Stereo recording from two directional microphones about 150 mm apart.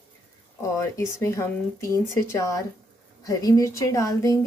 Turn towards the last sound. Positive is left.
turn(degrees=20)  # may be behind; listen again after turning